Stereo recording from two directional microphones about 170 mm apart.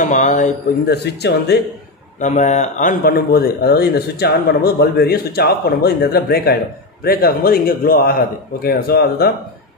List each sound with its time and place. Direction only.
0.0 s speech: 45° left (ahead or behind)
0.8 s speech: 75° left (ahead or behind)
2.1 s speech: 45° left (ahead or behind); by 9.3 s 65° left (ahead or behind)